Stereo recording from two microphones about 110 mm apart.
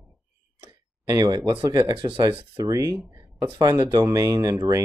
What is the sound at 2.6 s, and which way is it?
Speech, 30° right (ahead or behind).